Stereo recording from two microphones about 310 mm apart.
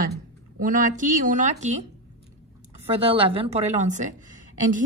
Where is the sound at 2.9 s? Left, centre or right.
Centre.